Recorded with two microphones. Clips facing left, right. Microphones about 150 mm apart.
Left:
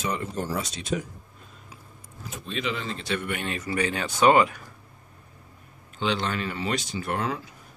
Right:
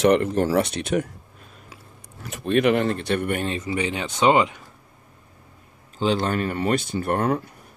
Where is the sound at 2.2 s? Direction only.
65° right (ahead or behind); by 3.4 s 50° right (ahead or behind).